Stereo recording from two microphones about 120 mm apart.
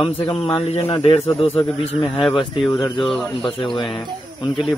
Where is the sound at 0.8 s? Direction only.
50° left (ahead or behind).